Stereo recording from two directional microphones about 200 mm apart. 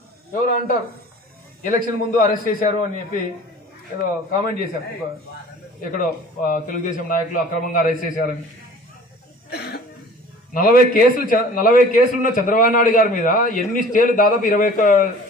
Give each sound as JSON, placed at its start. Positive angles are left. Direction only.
{"t": 0.3, "sound": "a man's voice", "side_deg": 40}
{"t": 4.3, "sound": "a man's voice", "side_deg": 45}
{"t": 5.8, "sound": "a man's voice", "side_deg": 45}
{"t": 9.5, "sound": "cough", "side_deg": 55}
{"t": 10.5, "sound": "a man's voice", "side_deg": 45}